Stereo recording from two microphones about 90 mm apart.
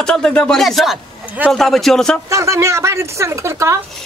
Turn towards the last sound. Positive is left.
turn(degrees=-35)  # may be behind; listen again after turning